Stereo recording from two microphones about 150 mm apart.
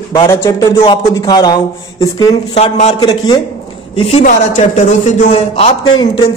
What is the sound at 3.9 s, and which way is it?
Speech, 40° left (ahead or behind).